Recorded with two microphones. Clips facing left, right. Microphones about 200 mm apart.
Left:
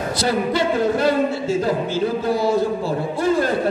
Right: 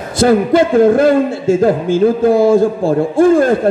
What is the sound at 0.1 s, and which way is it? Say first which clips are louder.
A man's voice: right 11 dB; 50° right (ahead or behind).